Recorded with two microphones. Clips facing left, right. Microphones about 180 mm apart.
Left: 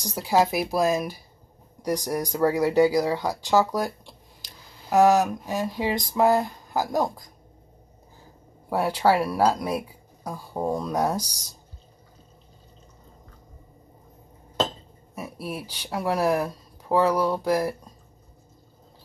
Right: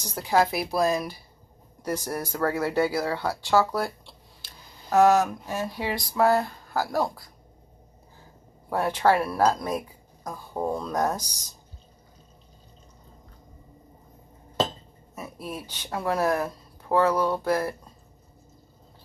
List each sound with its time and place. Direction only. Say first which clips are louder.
0.0 s speech: left 1 dB; 10° left (ahead or behind)
8.6 s speech: left 1 dB; 10° left (ahead or behind)
15.1 s speech: left 2 dB; 10° left (ahead or behind)